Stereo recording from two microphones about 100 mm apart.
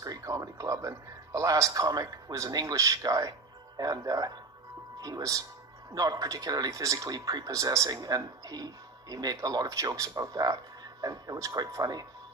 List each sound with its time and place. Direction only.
0.0 s a man's voice: 35° right (ahead or behind)